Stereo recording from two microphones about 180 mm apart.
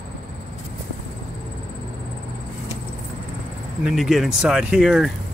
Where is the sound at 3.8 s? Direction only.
Centre (ahead or behind).